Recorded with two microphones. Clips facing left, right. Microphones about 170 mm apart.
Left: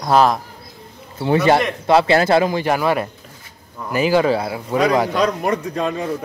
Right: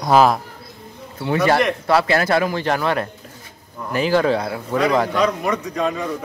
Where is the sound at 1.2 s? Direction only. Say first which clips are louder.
Left 2 dB; 25° left (ahead or behind).